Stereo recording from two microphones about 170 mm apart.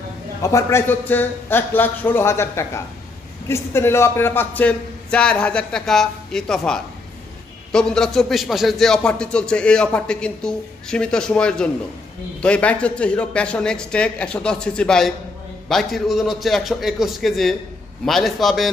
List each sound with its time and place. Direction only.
0.4 s a man's voice: 20° left (ahead or behind); by 18.7 s centre (ahead or behind)